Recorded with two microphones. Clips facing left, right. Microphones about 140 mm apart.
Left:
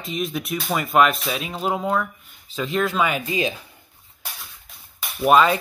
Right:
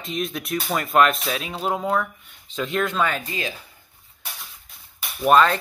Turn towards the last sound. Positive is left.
turn(degrees=5)  # may be behind; listen again after turning